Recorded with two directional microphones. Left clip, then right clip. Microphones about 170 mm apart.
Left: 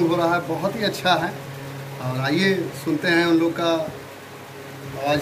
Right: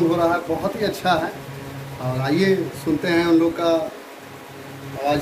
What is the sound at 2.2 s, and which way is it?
Speech, 20° right (ahead or behind).